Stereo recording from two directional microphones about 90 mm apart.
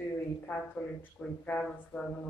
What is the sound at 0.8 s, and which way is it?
A man's voice, 20° left (ahead or behind).